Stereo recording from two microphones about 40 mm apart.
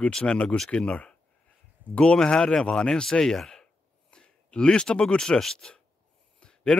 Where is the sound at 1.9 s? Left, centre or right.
Left.